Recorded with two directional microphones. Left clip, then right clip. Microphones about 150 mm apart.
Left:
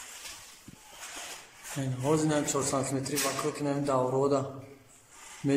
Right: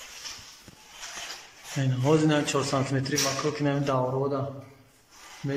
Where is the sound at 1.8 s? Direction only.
5° left (ahead or behind).